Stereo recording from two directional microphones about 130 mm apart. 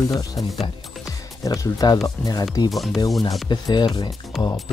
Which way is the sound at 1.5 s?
25° left (ahead or behind).